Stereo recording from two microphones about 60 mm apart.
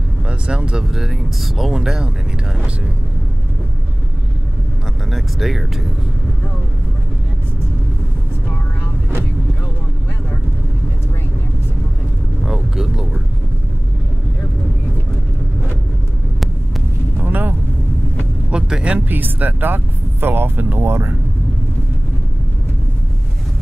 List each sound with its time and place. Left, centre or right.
0.3 s speech: centre
0.9 s speech: centre
5.1 s speech: centre
12.4 s vehicle: centre
17.2 s vehicle: right
18.5 s vehicle: centre
18.9 s speech: right